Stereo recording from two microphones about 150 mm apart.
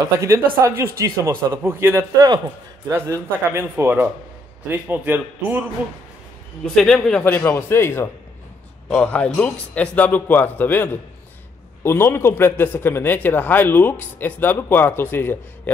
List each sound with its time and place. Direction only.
0.6 s a man's voice: 20° right (ahead or behind)
6.6 s speech: 5° left (ahead or behind)